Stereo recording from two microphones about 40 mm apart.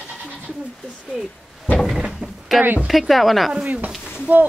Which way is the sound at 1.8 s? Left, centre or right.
Centre.